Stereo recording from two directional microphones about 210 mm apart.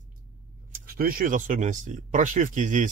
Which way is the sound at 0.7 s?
45° right (ahead or behind).